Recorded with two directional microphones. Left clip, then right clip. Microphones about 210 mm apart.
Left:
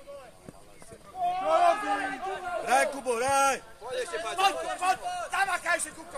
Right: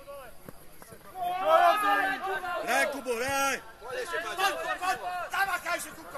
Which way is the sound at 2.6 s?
45° left (ahead or behind).